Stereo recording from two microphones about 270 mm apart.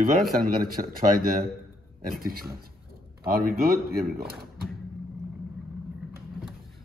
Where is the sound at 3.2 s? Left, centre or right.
Right.